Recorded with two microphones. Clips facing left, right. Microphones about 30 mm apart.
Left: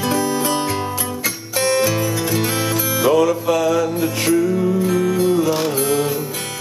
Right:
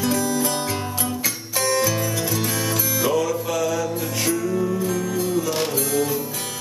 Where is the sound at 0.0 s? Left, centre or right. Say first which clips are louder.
Left 3 dB; left.